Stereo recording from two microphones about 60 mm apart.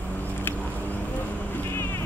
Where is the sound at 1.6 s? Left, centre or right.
Left.